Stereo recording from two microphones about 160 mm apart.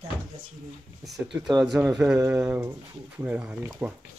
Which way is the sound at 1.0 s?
Centre (ahead or behind).